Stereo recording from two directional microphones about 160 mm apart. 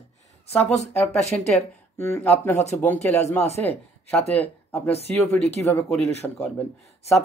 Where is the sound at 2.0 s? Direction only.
15° left (ahead or behind).